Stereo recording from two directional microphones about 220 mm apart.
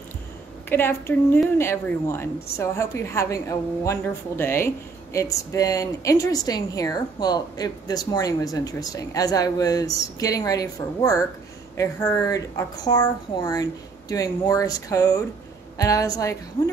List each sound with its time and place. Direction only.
0.7 s a woman's voice: 10° left (ahead or behind)